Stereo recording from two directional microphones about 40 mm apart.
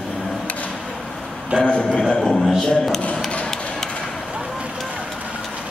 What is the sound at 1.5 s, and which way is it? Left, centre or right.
Speech, right.